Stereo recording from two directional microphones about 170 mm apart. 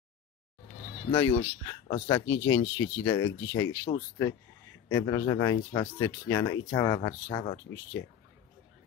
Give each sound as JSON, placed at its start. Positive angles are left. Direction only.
{"t": 1.1, "sound": "speech", "side_deg": 20}